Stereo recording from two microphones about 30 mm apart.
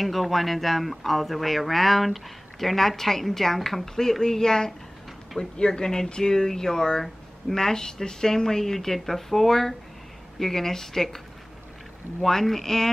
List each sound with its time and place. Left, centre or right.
0.0 s speech: centre